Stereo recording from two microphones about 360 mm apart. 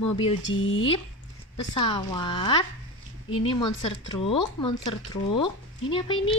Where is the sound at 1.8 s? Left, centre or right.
Centre.